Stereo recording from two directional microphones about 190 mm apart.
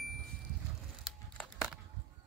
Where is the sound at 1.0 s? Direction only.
Centre (ahead or behind).